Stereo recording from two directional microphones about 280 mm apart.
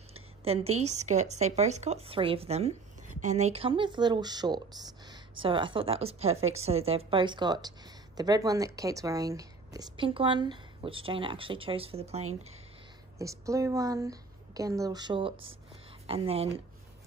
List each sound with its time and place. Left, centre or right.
0.1 s a woman's voice: right
13.2 s a woman's voice: centre